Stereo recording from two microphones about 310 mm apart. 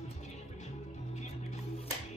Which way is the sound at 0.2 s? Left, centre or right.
Left.